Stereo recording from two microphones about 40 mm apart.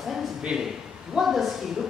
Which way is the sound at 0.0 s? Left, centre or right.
Centre.